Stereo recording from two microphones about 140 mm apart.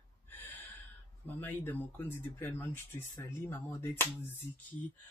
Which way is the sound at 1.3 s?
15° left (ahead or behind).